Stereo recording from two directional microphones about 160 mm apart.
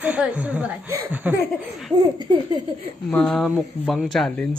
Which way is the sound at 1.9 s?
30° right (ahead or behind).